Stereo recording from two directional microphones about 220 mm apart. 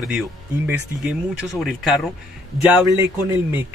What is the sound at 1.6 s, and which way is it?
Speech, centre (ahead or behind).